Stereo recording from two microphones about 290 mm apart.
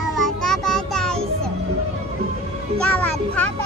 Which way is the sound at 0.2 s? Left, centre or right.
Centre.